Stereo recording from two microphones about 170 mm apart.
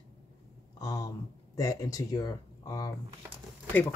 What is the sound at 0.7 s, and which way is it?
Speech, 20° left (ahead or behind).